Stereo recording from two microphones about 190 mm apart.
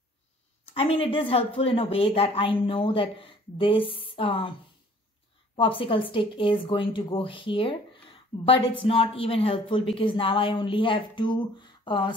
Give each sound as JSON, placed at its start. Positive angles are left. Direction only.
{"t": 0.7, "sound": "a woman's voice", "side_deg": 30}
{"t": 5.6, "sound": "a woman's voice", "side_deg": 25}